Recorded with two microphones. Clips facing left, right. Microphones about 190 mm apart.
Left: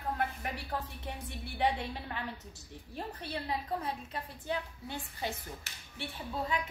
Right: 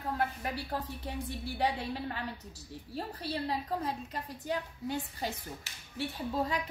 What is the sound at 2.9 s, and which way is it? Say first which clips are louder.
A woman's voice: right 3 dB; 35° right (ahead or behind).